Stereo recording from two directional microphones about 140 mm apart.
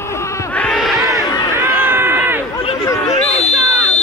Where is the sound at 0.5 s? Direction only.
10° left (ahead or behind).